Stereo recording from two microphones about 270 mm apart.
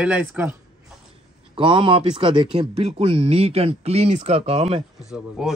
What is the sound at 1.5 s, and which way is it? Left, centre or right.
Speech, centre.